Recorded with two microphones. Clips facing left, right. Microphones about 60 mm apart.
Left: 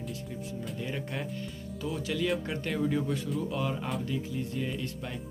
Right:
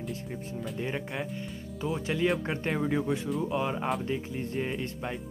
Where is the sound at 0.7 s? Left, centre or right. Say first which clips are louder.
Right 3 dB; right.